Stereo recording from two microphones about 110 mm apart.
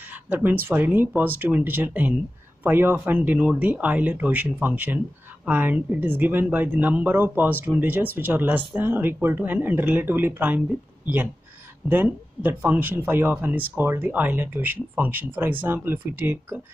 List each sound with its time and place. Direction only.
0.0 s speech: 15° right (ahead or behind)
11.9 s speech: 20° right (ahead or behind)